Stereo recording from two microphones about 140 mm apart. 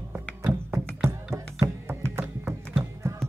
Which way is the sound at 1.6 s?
15° right (ahead or behind).